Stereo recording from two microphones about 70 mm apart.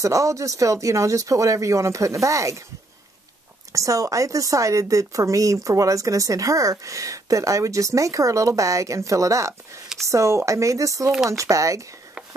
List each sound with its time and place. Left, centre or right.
0.0 s speech: right
3.7 s speech: right